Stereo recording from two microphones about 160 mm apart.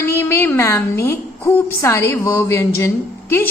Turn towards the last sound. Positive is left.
turn(degrees=15)  # may be behind; listen again after turning